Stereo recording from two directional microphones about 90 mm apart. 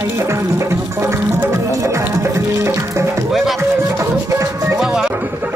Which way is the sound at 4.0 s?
35° right (ahead or behind).